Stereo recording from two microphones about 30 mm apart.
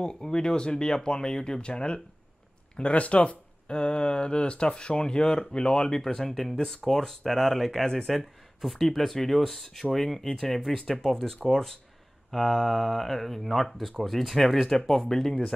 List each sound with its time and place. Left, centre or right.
0.0 s speech: left
2.8 s speech: left
3.6 s speech: left; by 7.8 s centre
7.8 s speech: centre